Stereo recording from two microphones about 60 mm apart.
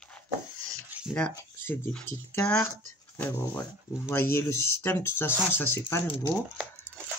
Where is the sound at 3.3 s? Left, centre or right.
Left.